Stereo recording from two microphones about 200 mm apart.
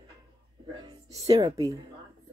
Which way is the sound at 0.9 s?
15° right (ahead or behind).